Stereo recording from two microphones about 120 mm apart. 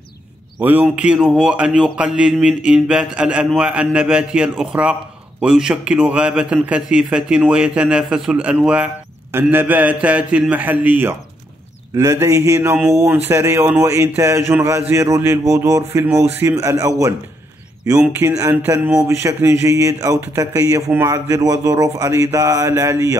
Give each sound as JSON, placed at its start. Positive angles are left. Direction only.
{"t": 0.6, "sound": "a man's voice", "side_deg": -15}
{"t": 11.9, "sound": "a man's voice", "side_deg": -30}